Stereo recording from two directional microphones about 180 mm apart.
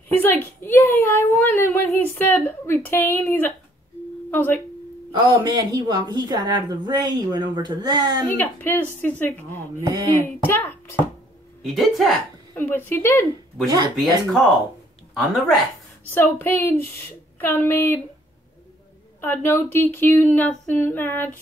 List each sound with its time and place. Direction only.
0.2 s a sound: 10° left (ahead or behind)
4.3 s tuning fork: 10° left (ahead or behind)
5.1 s a woman's voice: 20° right (ahead or behind)
8.4 s speech: 10° left (ahead or behind)
9.6 s speech: 20° right (ahead or behind)
10.1 s speech: 10° left (ahead or behind)
11.6 s speech: centre (ahead or behind)
12.5 s speech: 10° left (ahead or behind)
13.9 s speech: centre (ahead or behind)
16.3 s speech: 15° left (ahead or behind)
19.2 s speech: 10° left (ahead or behind)